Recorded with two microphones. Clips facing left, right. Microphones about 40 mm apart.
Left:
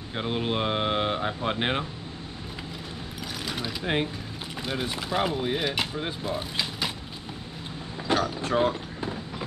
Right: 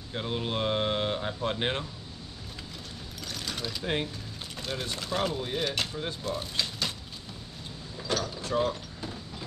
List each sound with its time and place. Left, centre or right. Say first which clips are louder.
0.1 s speech: left 4 dB; centre
3.4 s speech: left 3 dB; centre
8.1 s speech: left 5 dB; left